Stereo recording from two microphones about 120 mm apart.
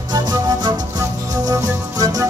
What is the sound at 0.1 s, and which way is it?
Music, 35° right (ahead or behind).